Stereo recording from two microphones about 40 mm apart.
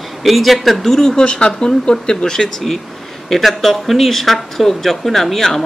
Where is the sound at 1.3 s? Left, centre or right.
Left.